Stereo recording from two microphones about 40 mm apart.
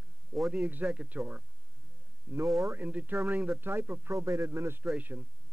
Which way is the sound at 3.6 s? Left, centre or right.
Right.